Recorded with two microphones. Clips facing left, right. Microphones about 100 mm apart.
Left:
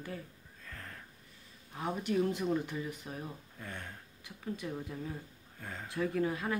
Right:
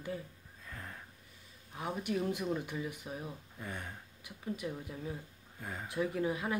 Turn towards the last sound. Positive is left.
turn(degrees=-10)  # may be behind; listen again after turning